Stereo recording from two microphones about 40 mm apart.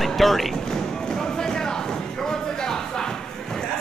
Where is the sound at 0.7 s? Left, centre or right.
Centre.